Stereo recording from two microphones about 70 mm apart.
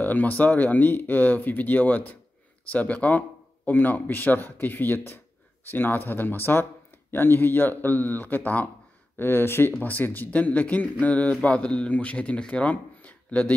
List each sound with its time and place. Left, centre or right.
0.0 s speech: left
9.1 s speech: left